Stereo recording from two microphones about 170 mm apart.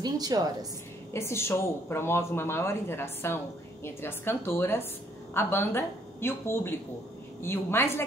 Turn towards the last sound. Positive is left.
turn(degrees=15)  # may be behind; listen again after turning